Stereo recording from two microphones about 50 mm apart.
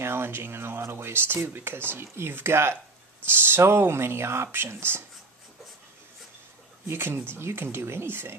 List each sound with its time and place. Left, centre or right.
0.0 s speech: right
6.9 s speech: right